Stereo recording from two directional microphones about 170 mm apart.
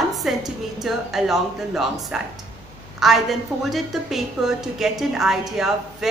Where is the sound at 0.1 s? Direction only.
Centre (ahead or behind).